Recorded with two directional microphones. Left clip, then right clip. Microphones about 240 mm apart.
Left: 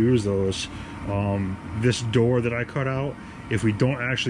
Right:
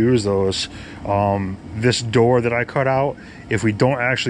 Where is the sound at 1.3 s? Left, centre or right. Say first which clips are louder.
Right 5 dB; centre.